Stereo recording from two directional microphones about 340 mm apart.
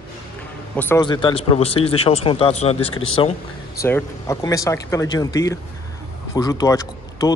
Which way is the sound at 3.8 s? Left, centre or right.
Centre.